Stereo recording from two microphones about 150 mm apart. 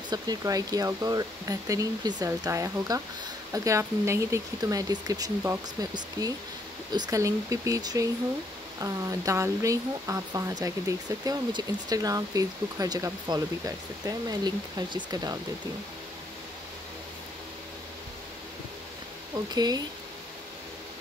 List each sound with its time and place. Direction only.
0.1 s speech: 25° right (ahead or behind)
19.3 s speech: 25° right (ahead or behind)